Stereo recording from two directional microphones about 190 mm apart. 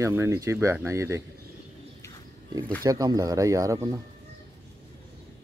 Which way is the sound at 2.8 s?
20° right (ahead or behind).